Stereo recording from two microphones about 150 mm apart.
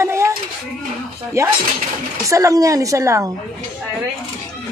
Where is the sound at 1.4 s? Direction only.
20° right (ahead or behind).